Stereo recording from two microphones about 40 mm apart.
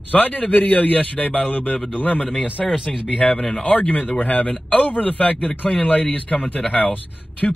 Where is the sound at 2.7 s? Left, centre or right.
Centre.